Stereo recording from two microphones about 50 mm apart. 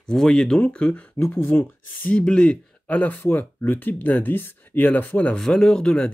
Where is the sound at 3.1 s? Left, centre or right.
Left.